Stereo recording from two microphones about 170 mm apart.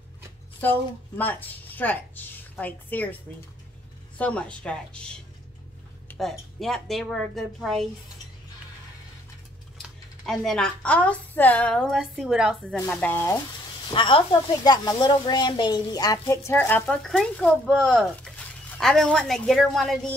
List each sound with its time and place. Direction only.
0.6 s a woman's voice: 10° left (ahead or behind)
4.2 s a woman's voice: 5° left (ahead or behind)
9.8 s speech: centre (ahead or behind)
12.7 s a woman's voice: 10° left (ahead or behind)
13.8 s speech: 30° left (ahead or behind); by 20.1 s centre (ahead or behind)